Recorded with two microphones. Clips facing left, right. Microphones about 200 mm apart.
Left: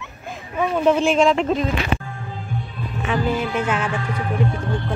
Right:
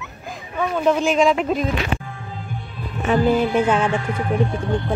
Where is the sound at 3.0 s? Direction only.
40° right (ahead or behind).